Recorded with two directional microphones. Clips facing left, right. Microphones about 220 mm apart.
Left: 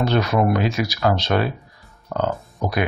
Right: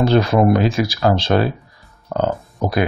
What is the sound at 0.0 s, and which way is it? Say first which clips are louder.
Speech: right 5 dB; 30° right (ahead or behind).